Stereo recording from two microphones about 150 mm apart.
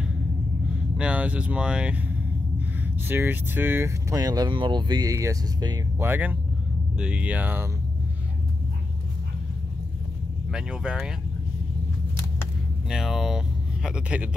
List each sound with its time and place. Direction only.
0.9 s speech: 10° right (ahead or behind); by 5.8 s 25° right (ahead or behind)
5.9 s speech: 15° right (ahead or behind)
10.5 s speech: 5° right (ahead or behind)
12.9 s speech: centre (ahead or behind)